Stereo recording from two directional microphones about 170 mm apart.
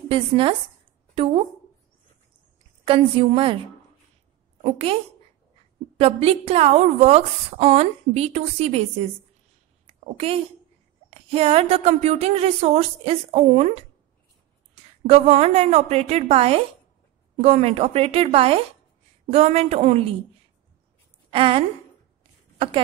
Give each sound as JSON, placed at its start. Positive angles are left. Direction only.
{"t": 0.1, "sound": "a woman's voice", "side_deg": -30}
{"t": 1.1, "sound": "a sound", "side_deg": -35}
{"t": 2.9, "sound": "a woman's voice", "side_deg": -30}
{"t": 4.6, "sound": "a woman's voice", "side_deg": -35}
{"t": 9.8, "sound": "a sound", "side_deg": -35}
{"t": 11.1, "sound": "a woman's voice", "side_deg": -35}
{"t": 15.0, "sound": "a woman's voice", "side_deg": -40}
{"t": 21.3, "sound": "speech", "side_deg": -35}